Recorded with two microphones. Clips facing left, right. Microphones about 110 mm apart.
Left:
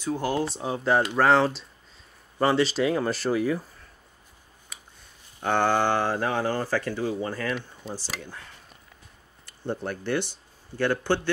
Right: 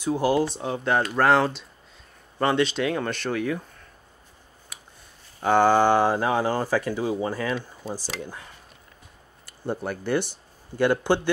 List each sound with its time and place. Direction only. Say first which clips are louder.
0.0 s speech: right 4 dB; 10° right (ahead or behind)
0.7 s speech: left 1 dB; centre (ahead or behind)
4.7 s a sound: right 1 dB; 5° right (ahead or behind)
5.4 s speech: right 5 dB; 10° right (ahead or behind)
9.5 s speech: right 2 dB; 10° right (ahead or behind)